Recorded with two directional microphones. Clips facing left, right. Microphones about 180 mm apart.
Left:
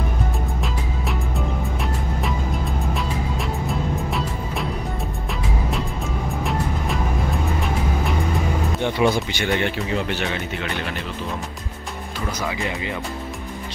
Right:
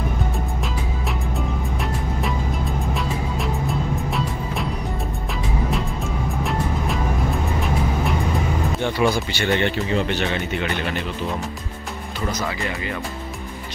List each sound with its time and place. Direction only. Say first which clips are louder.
2.9 s music: even; centre (ahead or behind)
8.8 s speech: left 1 dB; 20° left (ahead or behind)
12.4 s speech: even; 15° left (ahead or behind)